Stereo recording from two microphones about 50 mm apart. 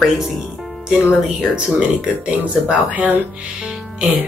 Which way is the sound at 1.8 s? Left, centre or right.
Centre.